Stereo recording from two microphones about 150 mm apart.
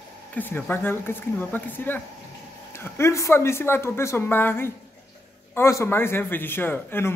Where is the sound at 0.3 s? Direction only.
10° left (ahead or behind).